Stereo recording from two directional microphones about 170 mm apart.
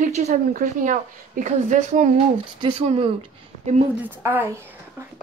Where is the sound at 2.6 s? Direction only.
35° right (ahead or behind).